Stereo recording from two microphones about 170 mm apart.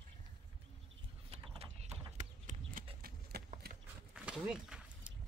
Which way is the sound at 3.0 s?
65° right (ahead or behind).